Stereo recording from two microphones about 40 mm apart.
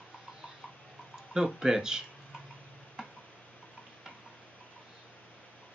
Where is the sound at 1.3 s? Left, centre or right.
Centre.